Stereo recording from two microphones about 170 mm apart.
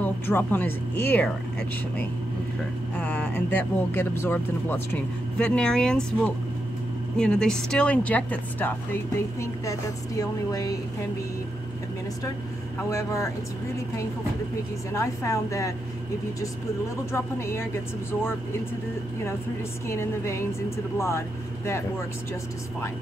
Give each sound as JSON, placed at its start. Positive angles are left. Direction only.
{"t": 0.0, "sound": "speech", "side_deg": 10}
{"t": 3.0, "sound": "speech", "side_deg": 10}
{"t": 12.9, "sound": "speech", "side_deg": 15}
{"t": 14.9, "sound": "speech", "side_deg": 20}
{"t": 17.1, "sound": "speech", "side_deg": 15}
{"t": 19.9, "sound": "speech", "side_deg": 15}